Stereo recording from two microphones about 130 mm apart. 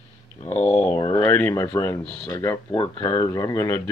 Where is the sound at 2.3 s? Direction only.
20° left (ahead or behind).